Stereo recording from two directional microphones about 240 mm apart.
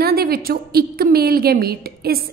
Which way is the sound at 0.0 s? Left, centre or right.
Right.